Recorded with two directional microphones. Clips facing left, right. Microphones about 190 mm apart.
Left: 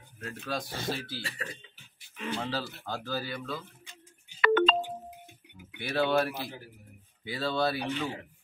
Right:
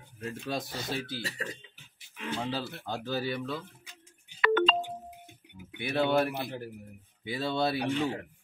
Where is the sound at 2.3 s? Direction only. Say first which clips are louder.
Right 1 dB; 15° right (ahead or behind).